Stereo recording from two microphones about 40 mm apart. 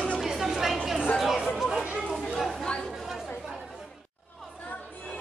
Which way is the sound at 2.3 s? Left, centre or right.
Centre.